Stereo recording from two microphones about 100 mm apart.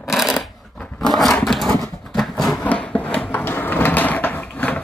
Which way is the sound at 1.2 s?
5° left (ahead or behind).